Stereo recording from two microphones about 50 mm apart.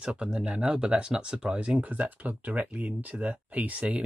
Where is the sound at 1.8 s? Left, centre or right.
Right.